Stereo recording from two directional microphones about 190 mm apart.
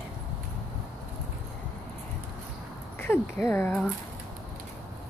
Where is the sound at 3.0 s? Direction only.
10° left (ahead or behind).